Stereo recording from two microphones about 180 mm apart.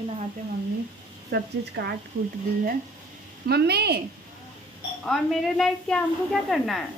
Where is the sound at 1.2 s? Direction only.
65° right (ahead or behind).